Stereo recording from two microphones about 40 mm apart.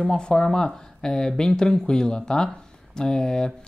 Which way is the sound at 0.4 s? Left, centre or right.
Centre.